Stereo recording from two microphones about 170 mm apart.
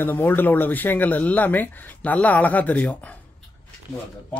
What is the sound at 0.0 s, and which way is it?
Speech, 10° left (ahead or behind).